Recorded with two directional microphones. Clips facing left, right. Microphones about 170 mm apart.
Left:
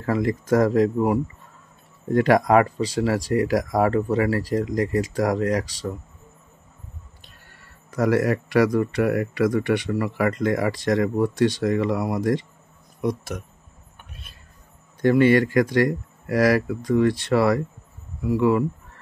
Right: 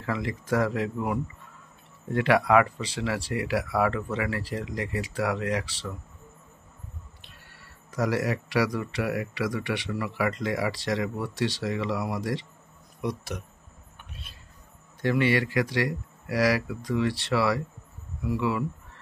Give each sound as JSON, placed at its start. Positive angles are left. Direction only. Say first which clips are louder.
{"t": 0.0, "sound": "speech", "louder": "left 8 dB", "side_deg": 45}
{"t": 7.9, "sound": "speech", "louder": "left 6 dB", "side_deg": 55}
{"t": 15.0, "sound": "speech", "louder": "left 8 dB", "side_deg": 45}